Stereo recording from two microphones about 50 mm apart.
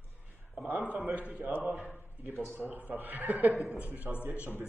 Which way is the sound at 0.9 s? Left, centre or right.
Right.